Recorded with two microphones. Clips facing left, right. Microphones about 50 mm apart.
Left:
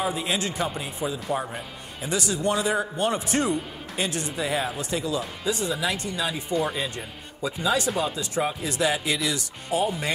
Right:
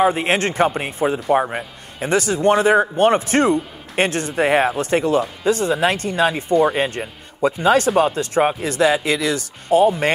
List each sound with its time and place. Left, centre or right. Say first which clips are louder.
0.0 s a man's voice: right 10 dB; right